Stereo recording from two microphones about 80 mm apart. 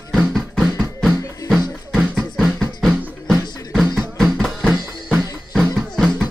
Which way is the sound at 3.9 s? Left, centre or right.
Centre.